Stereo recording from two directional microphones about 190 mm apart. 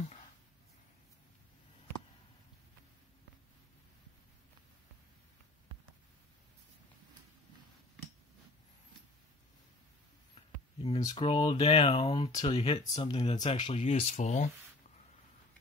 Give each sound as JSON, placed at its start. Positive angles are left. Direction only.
{"t": 11.0, "sound": "speech", "side_deg": 25}
{"t": 12.3, "sound": "speech", "side_deg": 20}
{"t": 12.5, "sound": "speech", "side_deg": 30}